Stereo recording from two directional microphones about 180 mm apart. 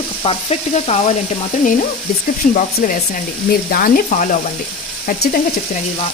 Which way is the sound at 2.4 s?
50° left (ahead or behind).